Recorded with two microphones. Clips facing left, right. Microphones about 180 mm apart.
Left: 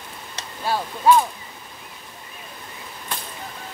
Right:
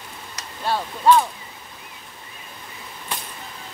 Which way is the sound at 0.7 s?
10° left (ahead or behind).